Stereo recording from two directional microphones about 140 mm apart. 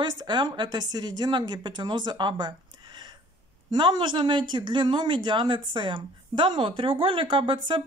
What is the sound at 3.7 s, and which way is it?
A woman's voice, 30° right (ahead or behind).